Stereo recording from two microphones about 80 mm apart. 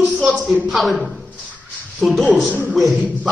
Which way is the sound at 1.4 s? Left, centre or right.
Centre.